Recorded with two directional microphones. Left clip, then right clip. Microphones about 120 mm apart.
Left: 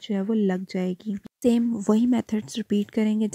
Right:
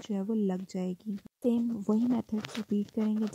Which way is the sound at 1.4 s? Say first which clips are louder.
Left 8 dB; 45° left (ahead or behind).